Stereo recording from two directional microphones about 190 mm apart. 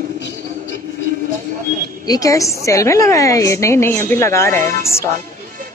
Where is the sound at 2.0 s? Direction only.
20° left (ahead or behind).